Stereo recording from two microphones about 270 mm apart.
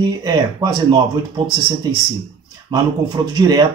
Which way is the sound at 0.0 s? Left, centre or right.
Centre.